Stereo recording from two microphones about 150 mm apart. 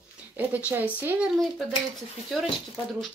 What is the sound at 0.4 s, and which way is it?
Speech, 10° right (ahead or behind).